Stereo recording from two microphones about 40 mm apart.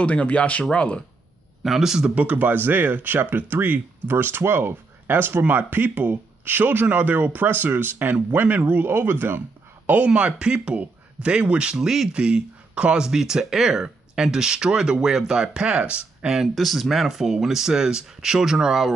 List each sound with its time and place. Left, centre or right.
0.0 s speech: left
1.6 s speech: centre
2.1 s speech: right
5.5 s speech: right
10.0 s speech: right
11.8 s speech: centre
12.1 s speech: right
16.5 s speech: centre